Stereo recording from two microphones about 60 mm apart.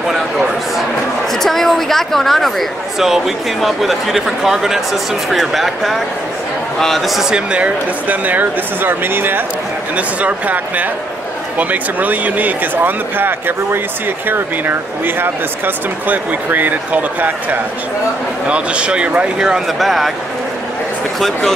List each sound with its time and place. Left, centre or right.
1.4 s speech: centre
7.2 s speech: centre; by 9.4 s right
9.9 s speech: right
18.5 s speech: centre
19.8 s speech: centre